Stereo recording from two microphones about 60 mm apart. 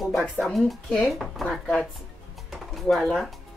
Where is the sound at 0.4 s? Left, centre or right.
Centre.